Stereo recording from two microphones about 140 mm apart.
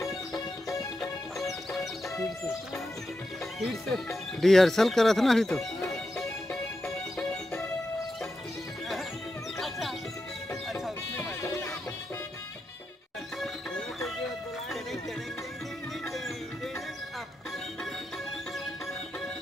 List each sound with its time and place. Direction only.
2.1 s music: 15° left (ahead or behind)
3.5 s speech: centre (ahead or behind)
9.6 s music: centre (ahead or behind)
11.2 s music: 20° left (ahead or behind)
13.4 s music: 5° left (ahead or behind)
16.1 s music: centre (ahead or behind)